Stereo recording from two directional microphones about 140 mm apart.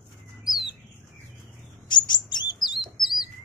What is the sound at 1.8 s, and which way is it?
Bird, 30° left (ahead or behind).